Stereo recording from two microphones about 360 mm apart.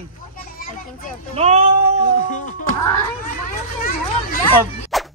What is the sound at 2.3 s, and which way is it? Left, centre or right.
Music, left.